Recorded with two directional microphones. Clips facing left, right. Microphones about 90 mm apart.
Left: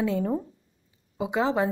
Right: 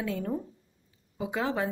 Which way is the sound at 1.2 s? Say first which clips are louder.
Left 5 dB; 15° left (ahead or behind).